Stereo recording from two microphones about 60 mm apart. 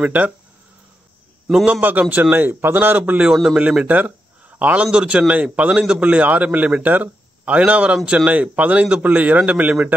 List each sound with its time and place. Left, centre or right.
0.0 s a man's voice: right
1.7 s a man's voice: right
3.0 s a man's voice: right
3.8 s a sound: right
4.9 s a man's voice: centre